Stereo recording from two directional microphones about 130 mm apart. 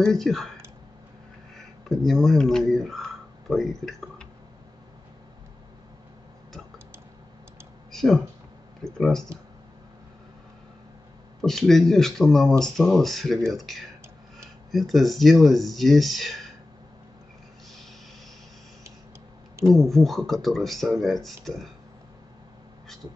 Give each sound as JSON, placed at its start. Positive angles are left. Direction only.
{"t": 0.0, "sound": "speech", "side_deg": 5}
{"t": 1.9, "sound": "speech", "side_deg": 0}
{"t": 7.9, "sound": "a sound", "side_deg": 5}
{"t": 8.8, "sound": "speech", "side_deg": 5}
{"t": 11.4, "sound": "speech", "side_deg": 5}
{"t": 19.9, "sound": "speech", "side_deg": 0}